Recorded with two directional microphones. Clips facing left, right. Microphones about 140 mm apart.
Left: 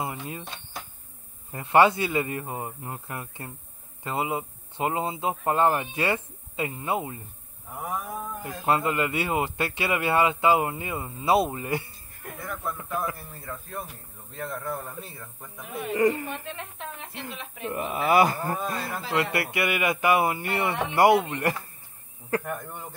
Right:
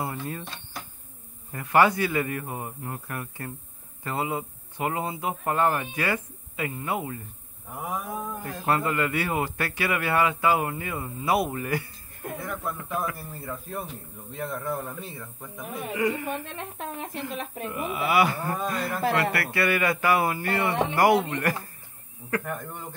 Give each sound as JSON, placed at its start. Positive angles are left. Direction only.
{"t": 0.0, "sound": "speech", "side_deg": 15}
{"t": 7.7, "sound": "a man's voice", "side_deg": 0}
{"t": 8.6, "sound": "speech", "side_deg": 20}
{"t": 12.4, "sound": "a man's voice", "side_deg": 0}
{"t": 15.9, "sound": "speech", "side_deg": 40}
{"t": 16.3, "sound": "a woman's voice", "side_deg": -45}
{"t": 17.6, "sound": "speech", "side_deg": 40}
{"t": 19.3, "sound": "speech", "side_deg": 20}
{"t": 22.4, "sound": "a man's voice", "side_deg": 10}